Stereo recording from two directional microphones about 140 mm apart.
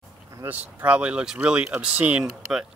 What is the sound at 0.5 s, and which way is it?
Speech, 10° right (ahead or behind).